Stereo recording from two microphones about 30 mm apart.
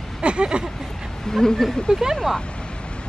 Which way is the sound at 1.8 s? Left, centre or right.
Centre.